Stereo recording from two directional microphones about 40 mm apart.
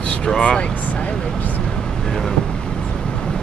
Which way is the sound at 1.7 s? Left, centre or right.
Centre.